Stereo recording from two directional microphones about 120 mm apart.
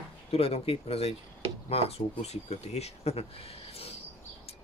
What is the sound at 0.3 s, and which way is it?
Speech, 55° left (ahead or behind).